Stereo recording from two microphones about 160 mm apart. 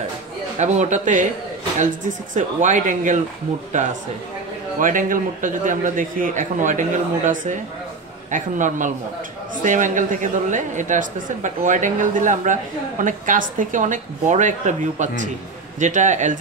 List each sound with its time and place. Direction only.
0.6 s speech: 45° right (ahead or behind)
4.7 s a man's voice: 55° right (ahead or behind)